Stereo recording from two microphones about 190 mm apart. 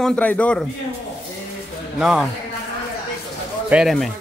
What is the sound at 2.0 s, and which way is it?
Speech, centre (ahead or behind).